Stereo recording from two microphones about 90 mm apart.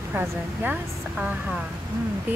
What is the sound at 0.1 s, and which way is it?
Speech, 20° right (ahead or behind).